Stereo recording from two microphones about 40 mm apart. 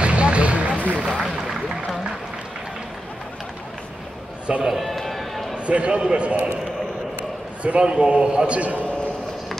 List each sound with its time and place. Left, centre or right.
0.0 s music: right
1.0 s a sound: right
4.6 s run: centre
5.7 s a man's voice: right
7.6 s a man's voice: right